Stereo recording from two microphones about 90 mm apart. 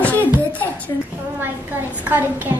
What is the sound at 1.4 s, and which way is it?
A woman's voice, 25° right (ahead or behind).